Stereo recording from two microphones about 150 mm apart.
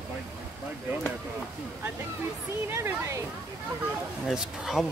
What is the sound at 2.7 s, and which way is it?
Speech, 15° right (ahead or behind).